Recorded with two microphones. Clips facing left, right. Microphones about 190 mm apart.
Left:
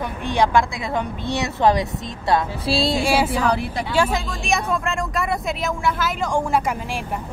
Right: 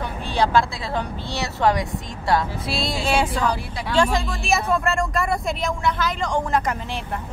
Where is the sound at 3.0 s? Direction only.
5° left (ahead or behind).